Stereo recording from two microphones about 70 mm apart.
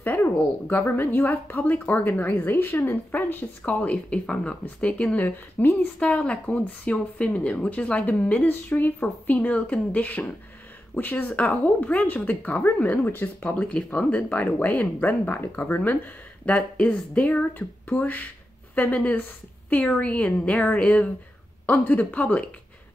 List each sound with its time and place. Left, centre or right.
0.0 s a woman's voice: left
5.9 s a woman's voice: centre